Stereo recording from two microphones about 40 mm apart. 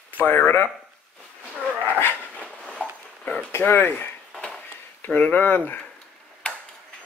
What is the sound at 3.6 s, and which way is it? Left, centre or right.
Speech, left.